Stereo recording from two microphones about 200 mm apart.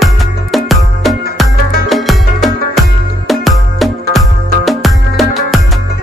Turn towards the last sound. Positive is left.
turn(degrees=0)  # may be behind; listen again after turning